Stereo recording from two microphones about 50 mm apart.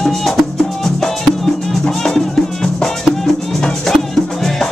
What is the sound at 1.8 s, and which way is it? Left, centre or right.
Music, centre.